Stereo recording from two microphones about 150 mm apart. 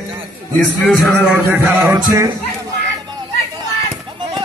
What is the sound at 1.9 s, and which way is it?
Speech, 20° right (ahead or behind).